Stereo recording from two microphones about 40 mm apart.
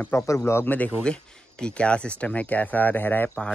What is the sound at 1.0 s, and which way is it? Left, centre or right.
Speech, left.